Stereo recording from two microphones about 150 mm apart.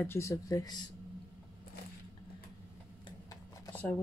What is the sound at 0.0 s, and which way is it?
Speech, 15° left (ahead or behind).